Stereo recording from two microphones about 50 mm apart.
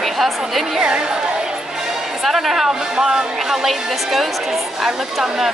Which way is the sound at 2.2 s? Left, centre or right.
Centre.